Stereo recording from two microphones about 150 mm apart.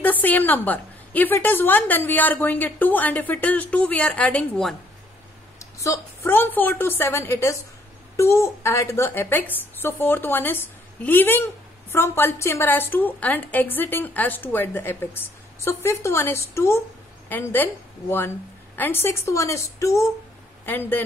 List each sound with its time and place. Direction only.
0.0 s a woman's voice: 10° left (ahead or behind)
5.6 s a woman's voice: 20° left (ahead or behind)
18.8 s a woman's voice: 15° left (ahead or behind)